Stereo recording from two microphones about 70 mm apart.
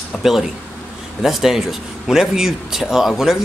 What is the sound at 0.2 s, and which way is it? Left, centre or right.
Speech, centre.